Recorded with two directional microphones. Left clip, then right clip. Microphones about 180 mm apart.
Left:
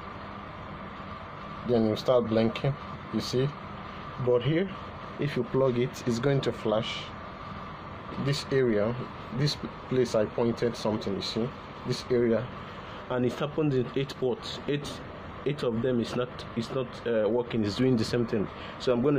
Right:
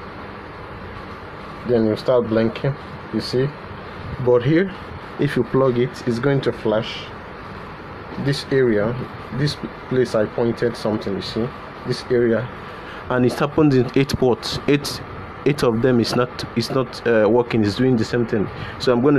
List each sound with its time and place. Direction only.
1.7 s speech: centre (ahead or behind)
4.3 s speech: 15° right (ahead or behind)
5.6 s speech: 5° right (ahead or behind)
8.3 s speech: 5° right (ahead or behind)
13.1 s speech: 20° right (ahead or behind)
17.6 s speech: 5° right (ahead or behind)